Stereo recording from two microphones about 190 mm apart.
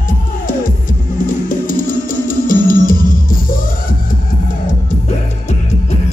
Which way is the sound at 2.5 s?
45° left (ahead or behind).